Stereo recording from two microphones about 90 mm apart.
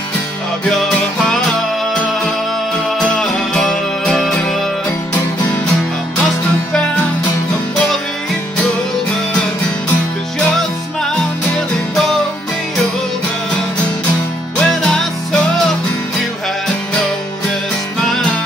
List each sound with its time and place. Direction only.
3.0 s music: 10° left (ahead or behind)
11.5 s music: 5° left (ahead or behind)
14.6 s music: 5° left (ahead or behind)